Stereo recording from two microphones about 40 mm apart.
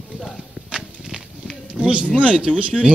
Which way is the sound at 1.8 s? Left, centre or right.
Right.